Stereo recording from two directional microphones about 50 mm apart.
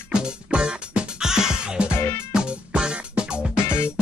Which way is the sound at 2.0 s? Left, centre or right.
Left.